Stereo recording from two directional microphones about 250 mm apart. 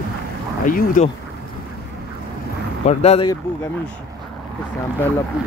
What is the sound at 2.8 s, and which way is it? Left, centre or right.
Speech, left.